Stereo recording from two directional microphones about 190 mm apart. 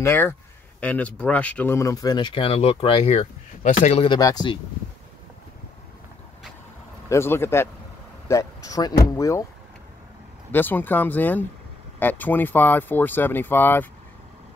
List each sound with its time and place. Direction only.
0.0 s speech: 10° left (ahead or behind)
7.1 s speech: 15° left (ahead or behind)
10.5 s speech: 10° left (ahead or behind)